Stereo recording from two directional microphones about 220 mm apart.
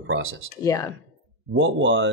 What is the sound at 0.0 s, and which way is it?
Speech, 65° right (ahead or behind).